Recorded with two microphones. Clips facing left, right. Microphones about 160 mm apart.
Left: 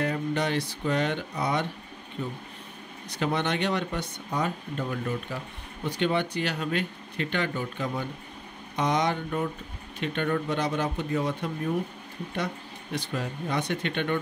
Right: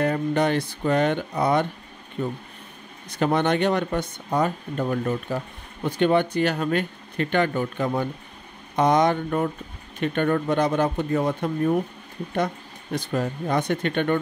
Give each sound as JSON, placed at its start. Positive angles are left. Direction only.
{"t": 0.0, "sound": "speech", "side_deg": -50}
{"t": 3.1, "sound": "speech", "side_deg": -50}
{"t": 12.9, "sound": "speech", "side_deg": -45}